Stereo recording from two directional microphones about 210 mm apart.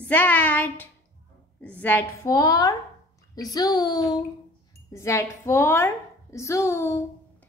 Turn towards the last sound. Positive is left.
turn(degrees=10)  # may be behind; listen again after turning